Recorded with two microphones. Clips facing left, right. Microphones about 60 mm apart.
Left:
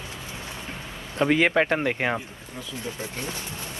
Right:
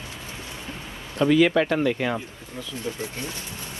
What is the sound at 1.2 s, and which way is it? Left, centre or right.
Speech, left.